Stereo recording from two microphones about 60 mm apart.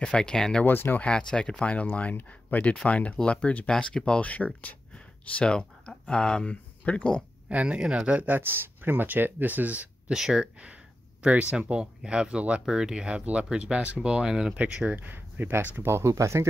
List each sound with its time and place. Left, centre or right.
0.0 s speech: centre
0.7 s speech: left
1.0 s speech: centre
3.6 s speech: centre
7.4 s speech: centre
8.2 s speech: right
10.1 s speech: centre
14.9 s speech: right
15.8 s speech: right
16.1 s speech: right